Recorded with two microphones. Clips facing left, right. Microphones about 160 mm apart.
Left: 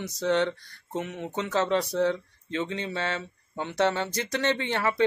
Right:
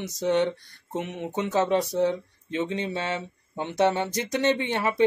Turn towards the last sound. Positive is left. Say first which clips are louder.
# right 2 dB
turn(degrees=-20)  # may be behind; listen again after turning